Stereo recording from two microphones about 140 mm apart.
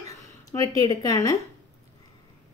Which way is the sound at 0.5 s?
25° left (ahead or behind).